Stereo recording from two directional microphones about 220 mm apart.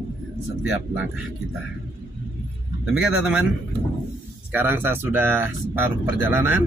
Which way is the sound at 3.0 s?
5° right (ahead or behind).